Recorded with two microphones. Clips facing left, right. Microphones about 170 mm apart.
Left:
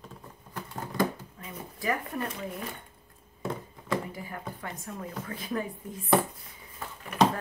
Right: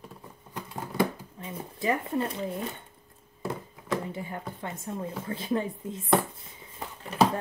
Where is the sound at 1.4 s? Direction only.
25° right (ahead or behind).